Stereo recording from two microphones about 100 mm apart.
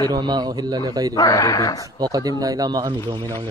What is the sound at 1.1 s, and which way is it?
Speech, 35° left (ahead or behind).